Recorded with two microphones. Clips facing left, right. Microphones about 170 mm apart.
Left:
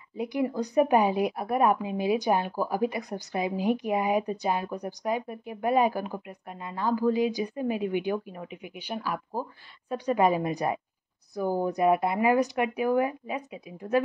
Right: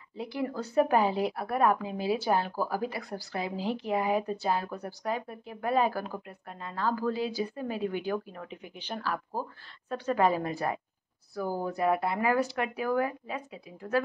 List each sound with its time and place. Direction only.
0.2 s a woman's voice: 15° left (ahead or behind)